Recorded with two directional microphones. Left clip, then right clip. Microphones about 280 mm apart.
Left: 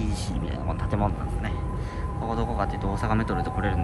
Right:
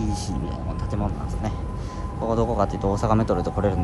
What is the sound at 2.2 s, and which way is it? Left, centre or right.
Speech, right.